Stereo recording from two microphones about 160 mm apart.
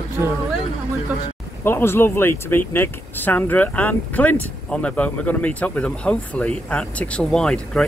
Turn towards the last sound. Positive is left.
turn(degrees=5)  # may be behind; listen again after turning